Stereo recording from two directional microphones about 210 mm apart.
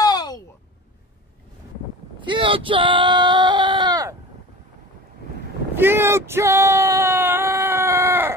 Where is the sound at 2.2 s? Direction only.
25° right (ahead or behind).